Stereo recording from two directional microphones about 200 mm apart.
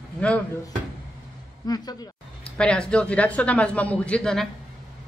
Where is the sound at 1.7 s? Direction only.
20° left (ahead or behind).